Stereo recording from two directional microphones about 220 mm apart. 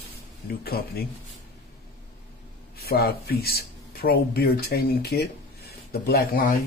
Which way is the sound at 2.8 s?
45° left (ahead or behind).